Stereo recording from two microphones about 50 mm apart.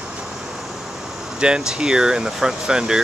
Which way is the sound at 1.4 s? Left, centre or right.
Centre.